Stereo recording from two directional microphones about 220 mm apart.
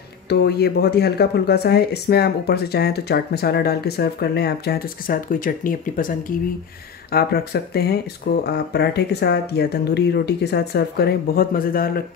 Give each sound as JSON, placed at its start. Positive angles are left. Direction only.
{"t": 0.3, "sound": "speech", "side_deg": 50}